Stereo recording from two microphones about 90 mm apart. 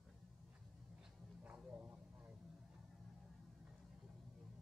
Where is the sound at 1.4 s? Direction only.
15° right (ahead or behind).